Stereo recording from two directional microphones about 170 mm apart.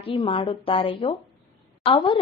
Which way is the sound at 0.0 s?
35° left (ahead or behind).